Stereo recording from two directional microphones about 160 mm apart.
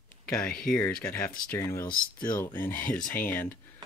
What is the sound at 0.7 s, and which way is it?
Speech, 15° left (ahead or behind).